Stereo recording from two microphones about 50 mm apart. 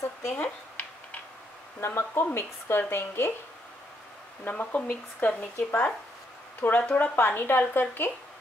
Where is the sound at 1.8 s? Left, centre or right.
Left.